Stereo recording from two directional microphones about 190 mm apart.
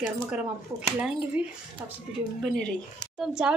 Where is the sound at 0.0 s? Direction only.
5° right (ahead or behind).